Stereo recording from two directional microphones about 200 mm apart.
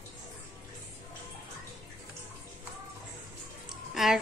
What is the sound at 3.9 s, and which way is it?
Music, centre (ahead or behind).